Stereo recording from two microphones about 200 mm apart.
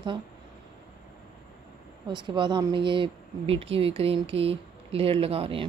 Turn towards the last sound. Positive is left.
turn(degrees=-25)  # may be behind; listen again after turning